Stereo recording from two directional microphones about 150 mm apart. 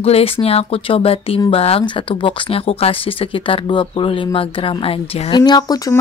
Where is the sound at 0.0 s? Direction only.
40° left (ahead or behind).